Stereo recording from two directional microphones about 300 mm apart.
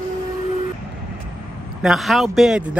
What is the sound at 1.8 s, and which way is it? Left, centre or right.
Speech, centre.